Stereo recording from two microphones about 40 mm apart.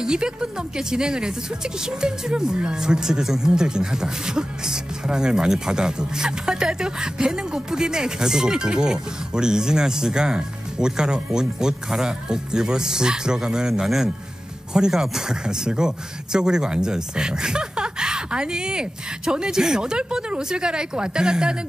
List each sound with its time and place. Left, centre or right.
0.0 s speech: centre